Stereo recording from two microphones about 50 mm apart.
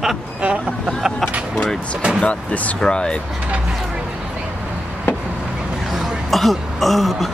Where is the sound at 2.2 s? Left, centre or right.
Left.